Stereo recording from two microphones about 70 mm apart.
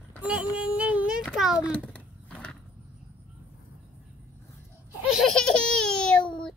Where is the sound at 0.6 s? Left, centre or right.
Centre.